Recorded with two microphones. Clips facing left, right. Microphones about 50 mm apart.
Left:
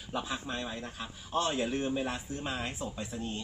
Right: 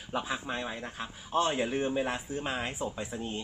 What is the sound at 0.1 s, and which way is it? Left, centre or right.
A man's voice, right.